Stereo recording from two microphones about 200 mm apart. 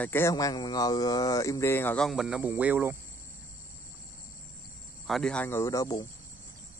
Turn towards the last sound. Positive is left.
turn(degrees=15)  # may be behind; listen again after turning